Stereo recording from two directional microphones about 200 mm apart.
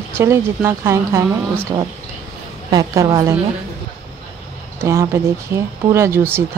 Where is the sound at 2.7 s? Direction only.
15° right (ahead or behind).